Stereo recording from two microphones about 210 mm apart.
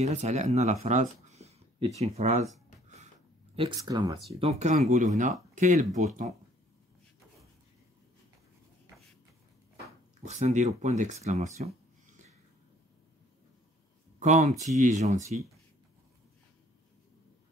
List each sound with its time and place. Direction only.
0.0 s speech: 30° right (ahead or behind)
3.5 s speech: 20° right (ahead or behind)
4.3 s speech: 30° right (ahead or behind)
10.2 s speech: 30° right (ahead or behind)
14.2 s speech: 35° right (ahead or behind)